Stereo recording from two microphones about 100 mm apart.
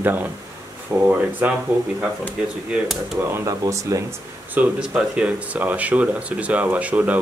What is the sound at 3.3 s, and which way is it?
Speech, 30° right (ahead or behind).